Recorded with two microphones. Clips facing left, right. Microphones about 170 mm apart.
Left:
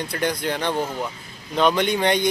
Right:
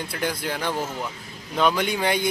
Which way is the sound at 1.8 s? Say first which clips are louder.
Left 3 dB; 5° right (ahead or behind).